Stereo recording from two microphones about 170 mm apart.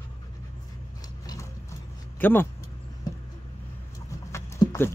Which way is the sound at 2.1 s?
10° left (ahead or behind).